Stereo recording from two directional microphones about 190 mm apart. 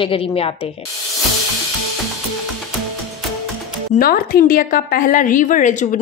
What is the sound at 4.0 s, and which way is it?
A woman's voice, 50° left (ahead or behind).